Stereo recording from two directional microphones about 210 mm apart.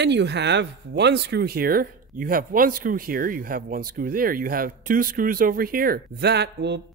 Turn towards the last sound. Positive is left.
turn(degrees=-55)  # may be behind; listen again after turning